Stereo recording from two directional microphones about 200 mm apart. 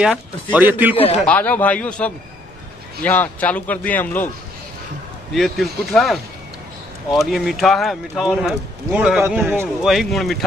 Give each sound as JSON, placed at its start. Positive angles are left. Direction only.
{"t": 0.0, "sound": "speech", "side_deg": -5}
{"t": 1.2, "sound": "a man's voice", "side_deg": 10}
{"t": 5.3, "sound": "a man's voice", "side_deg": 0}
{"t": 7.2, "sound": "a man's voice", "side_deg": 0}